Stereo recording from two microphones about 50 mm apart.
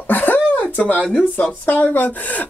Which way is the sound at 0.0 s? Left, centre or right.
Left.